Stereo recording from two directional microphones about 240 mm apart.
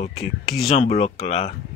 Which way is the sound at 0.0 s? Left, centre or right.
Left.